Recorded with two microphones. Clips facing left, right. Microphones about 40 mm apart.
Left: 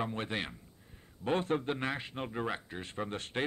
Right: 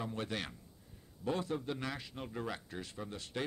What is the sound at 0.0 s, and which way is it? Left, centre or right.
Speech, left.